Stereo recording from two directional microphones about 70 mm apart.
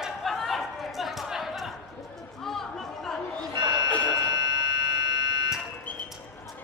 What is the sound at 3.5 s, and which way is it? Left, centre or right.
Buzzer, right.